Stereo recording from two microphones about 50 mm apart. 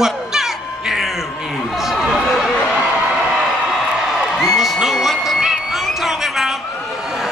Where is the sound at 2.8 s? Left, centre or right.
Right.